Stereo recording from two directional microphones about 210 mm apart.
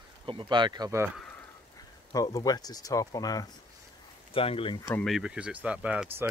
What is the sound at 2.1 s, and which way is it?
Speech, 15° left (ahead or behind).